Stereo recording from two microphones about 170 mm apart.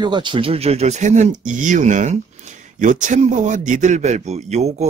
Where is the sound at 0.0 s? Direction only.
25° right (ahead or behind).